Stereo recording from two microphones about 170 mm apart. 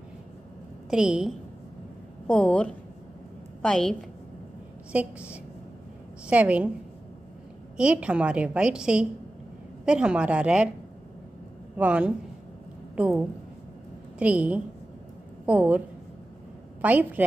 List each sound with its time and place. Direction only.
0.8 s a woman's voice: 5° right (ahead or behind)
2.2 s a woman's voice: 10° left (ahead or behind)
4.9 s a woman's voice: 10° right (ahead or behind)
6.2 s a woman's voice: 10° right (ahead or behind)
7.7 s a woman's voice: 5° right (ahead or behind)
11.7 s a woman's voice: 10° right (ahead or behind)
16.8 s a woman's voice: 10° right (ahead or behind)